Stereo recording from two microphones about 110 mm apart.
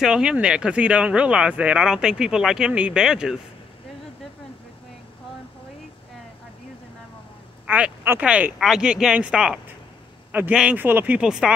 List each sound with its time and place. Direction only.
0.0 s speech: 5° right (ahead or behind)
7.6 s speech: 10° right (ahead or behind)
10.8 s speech: 20° right (ahead or behind)
11.1 s speech: 5° right (ahead or behind)